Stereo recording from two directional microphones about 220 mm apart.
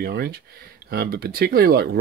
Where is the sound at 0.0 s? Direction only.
45° right (ahead or behind).